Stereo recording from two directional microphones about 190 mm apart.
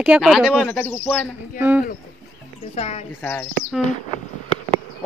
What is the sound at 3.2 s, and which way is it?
Speech, 10° left (ahead or behind).